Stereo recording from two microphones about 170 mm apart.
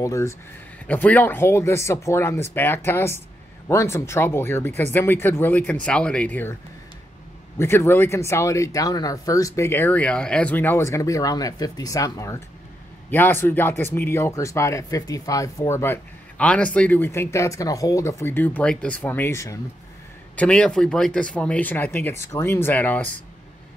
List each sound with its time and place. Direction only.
0.0 s speech: 20° left (ahead or behind)
7.5 s speech: 15° left (ahead or behind)
20.3 s speech: 5° left (ahead or behind)